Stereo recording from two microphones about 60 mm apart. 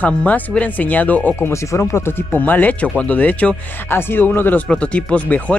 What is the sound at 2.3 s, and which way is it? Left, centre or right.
Speech, left.